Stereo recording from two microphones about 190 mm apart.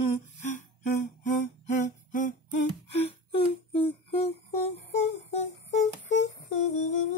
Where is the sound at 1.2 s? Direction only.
45° left (ahead or behind).